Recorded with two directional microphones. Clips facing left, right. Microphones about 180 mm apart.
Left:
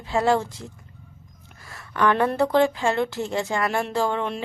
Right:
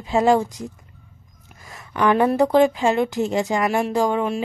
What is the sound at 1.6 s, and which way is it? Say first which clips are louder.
Speech: right 2 dB; 20° right (ahead or behind).